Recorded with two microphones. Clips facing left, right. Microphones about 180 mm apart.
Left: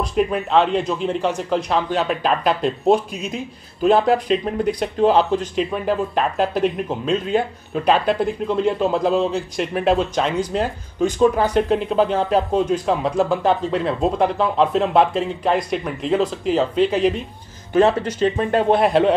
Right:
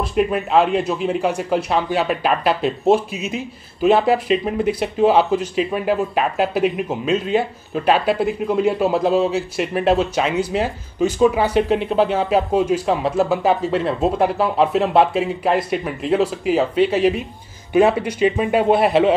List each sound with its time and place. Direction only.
0.0 s a man's voice: 5° right (ahead or behind)